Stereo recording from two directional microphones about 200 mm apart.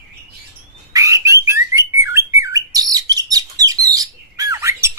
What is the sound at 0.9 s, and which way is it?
Bird, 15° right (ahead or behind).